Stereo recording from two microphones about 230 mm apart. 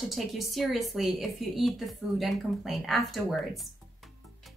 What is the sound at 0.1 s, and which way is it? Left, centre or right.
A woman's voice, centre.